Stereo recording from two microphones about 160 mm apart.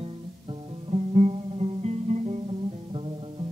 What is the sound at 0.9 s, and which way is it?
Music, 40° right (ahead or behind).